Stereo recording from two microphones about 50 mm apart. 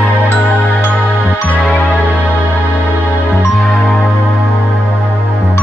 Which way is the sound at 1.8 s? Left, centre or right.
Left.